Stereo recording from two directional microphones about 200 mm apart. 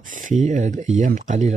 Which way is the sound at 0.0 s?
40° right (ahead or behind).